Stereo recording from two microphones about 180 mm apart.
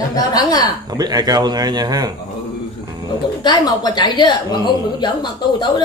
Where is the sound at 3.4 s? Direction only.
20° left (ahead or behind).